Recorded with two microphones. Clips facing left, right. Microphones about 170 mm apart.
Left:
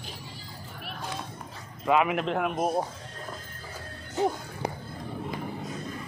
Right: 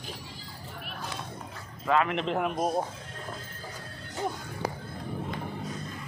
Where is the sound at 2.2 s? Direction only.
Centre (ahead or behind).